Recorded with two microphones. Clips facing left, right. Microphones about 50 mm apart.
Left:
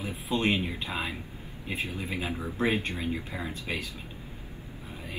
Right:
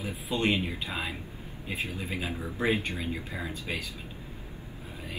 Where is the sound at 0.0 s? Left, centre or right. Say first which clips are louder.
Left 2 dB; left.